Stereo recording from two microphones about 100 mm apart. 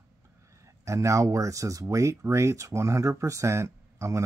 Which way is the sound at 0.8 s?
30° right (ahead or behind).